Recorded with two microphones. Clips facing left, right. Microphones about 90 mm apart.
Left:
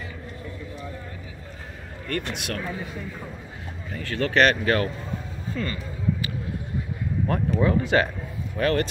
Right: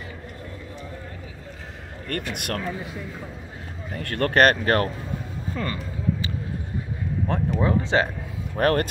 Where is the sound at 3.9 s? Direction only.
55° right (ahead or behind).